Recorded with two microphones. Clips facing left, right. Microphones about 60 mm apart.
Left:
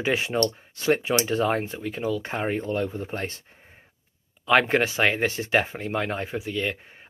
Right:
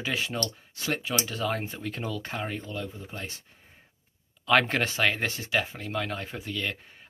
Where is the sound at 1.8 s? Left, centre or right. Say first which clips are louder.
Left 6 dB; centre.